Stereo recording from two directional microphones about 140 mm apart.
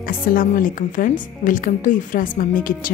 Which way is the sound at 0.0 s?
90° left.